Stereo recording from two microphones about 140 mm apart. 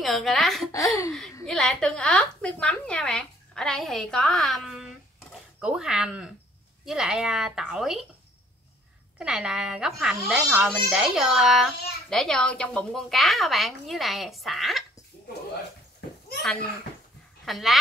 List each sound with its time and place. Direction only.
0.0 s a woman's voice: centre (ahead or behind)
0.7 s speech: 25° left (ahead or behind)
1.4 s speech: 5° left (ahead or behind)
9.2 s speech: 5° right (ahead or behind)
17.5 s speech: centre (ahead or behind)